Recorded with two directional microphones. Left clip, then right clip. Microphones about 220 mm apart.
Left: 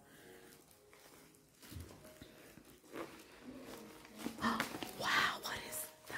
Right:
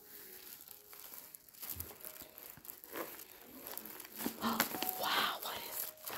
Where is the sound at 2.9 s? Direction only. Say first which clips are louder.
Right 3 dB; 55° right (ahead or behind).